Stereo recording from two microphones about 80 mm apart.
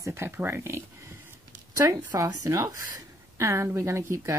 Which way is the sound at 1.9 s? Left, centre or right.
Right.